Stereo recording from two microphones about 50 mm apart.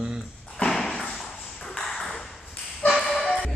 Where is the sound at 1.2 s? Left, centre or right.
Centre.